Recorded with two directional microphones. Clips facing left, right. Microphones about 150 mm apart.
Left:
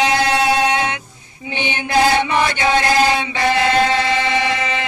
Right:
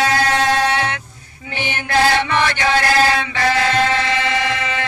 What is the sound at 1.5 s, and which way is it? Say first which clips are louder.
Chant: left 1 dB; 20° left (ahead or behind).